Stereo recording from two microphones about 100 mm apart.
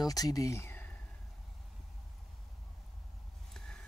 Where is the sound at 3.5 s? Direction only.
10° left (ahead or behind).